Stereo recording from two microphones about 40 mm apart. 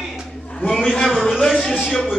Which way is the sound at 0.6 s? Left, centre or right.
Centre.